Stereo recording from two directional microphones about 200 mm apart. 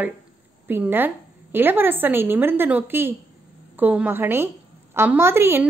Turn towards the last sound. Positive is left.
turn(degrees=-10)  # may be behind; listen again after turning